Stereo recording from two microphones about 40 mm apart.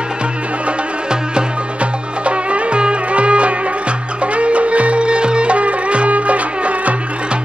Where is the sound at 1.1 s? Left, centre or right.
Right.